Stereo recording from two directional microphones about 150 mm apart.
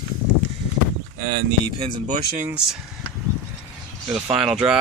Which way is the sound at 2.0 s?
55° right (ahead or behind).